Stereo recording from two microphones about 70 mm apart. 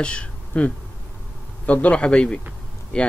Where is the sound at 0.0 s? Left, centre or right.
Centre.